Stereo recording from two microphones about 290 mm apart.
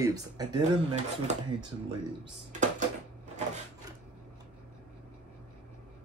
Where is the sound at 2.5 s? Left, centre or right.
Right.